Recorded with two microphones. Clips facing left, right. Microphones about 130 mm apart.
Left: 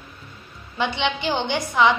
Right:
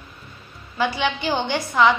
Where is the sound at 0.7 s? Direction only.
20° left (ahead or behind).